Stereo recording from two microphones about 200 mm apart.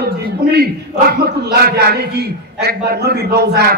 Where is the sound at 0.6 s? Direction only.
50° right (ahead or behind).